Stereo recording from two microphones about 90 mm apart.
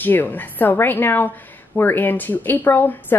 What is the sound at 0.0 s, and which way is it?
Speech, 20° left (ahead or behind).